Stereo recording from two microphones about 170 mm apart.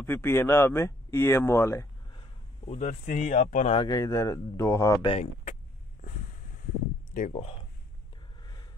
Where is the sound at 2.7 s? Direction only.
45° left (ahead or behind).